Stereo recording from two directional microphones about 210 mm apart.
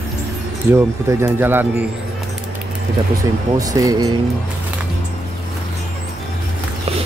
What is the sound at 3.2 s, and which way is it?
Speech, 15° right (ahead or behind).